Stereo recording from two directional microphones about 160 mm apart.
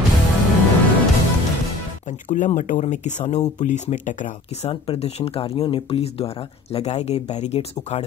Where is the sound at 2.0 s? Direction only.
50° left (ahead or behind).